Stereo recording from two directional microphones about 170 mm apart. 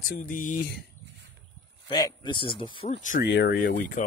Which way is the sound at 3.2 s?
75° left (ahead or behind).